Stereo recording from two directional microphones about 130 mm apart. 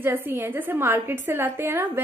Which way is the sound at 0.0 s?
15° right (ahead or behind).